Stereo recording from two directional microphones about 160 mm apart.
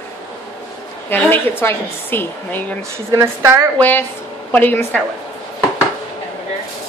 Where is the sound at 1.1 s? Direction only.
10° left (ahead or behind).